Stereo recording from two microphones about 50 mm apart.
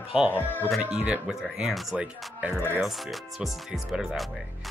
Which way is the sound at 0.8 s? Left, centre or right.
Right.